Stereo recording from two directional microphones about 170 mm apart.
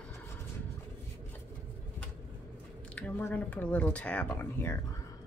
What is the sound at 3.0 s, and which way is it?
Speech, 10° left (ahead or behind).